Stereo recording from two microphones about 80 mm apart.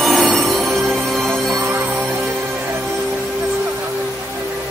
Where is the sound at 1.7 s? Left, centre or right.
Right.